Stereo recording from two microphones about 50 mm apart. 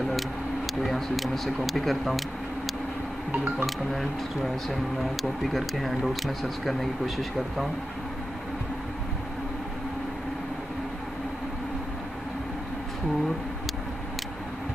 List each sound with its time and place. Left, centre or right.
0.7 s speech: centre
3.3 s speech: right
3.6 s speech: centre